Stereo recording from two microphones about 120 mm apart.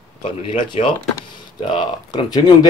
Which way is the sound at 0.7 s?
45° left (ahead or behind).